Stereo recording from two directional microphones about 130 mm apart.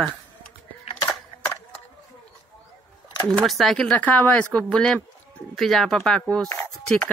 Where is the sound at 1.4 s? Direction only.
20° left (ahead or behind).